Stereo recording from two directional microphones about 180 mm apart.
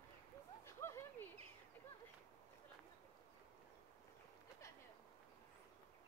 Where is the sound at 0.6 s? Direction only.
15° left (ahead or behind).